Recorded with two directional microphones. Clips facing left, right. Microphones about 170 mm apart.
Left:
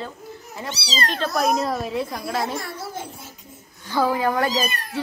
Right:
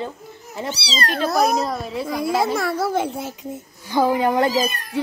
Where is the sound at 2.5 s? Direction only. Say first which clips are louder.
Right 10 dB; 80° right.